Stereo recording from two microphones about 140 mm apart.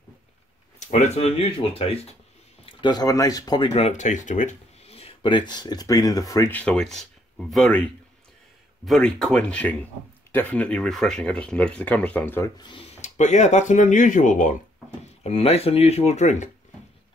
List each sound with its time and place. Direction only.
0.7 s speech: 55° left (ahead or behind)
2.6 s speech: 30° left (ahead or behind)
3.7 s speech: 50° left (ahead or behind); by 6.5 s 25° left (ahead or behind)
6.5 s speech: 5° left (ahead or behind)
8.8 s speech: centre (ahead or behind)
12.5 s speech: 35° left (ahead or behind)
13.0 s speech: 55° left (ahead or behind)
15.2 s speech: 45° left (ahead or behind)